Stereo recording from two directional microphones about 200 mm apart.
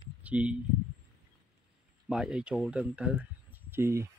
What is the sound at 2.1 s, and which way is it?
Speech, 5° right (ahead or behind).